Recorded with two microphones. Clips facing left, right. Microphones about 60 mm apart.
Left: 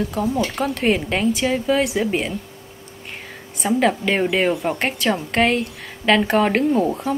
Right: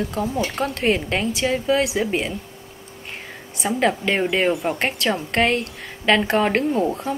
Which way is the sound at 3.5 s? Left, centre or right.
Centre.